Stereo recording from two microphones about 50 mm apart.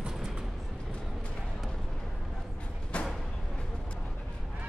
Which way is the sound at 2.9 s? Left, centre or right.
Left.